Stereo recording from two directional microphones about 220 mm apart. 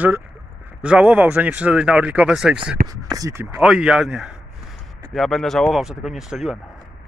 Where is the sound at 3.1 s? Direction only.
15° right (ahead or behind).